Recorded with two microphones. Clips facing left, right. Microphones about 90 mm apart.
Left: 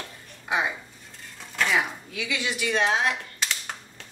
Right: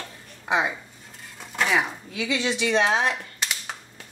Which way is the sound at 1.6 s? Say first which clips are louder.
Right 1 dB; 10° right (ahead or behind).